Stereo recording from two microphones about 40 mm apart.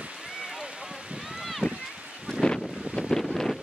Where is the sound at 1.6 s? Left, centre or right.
Right.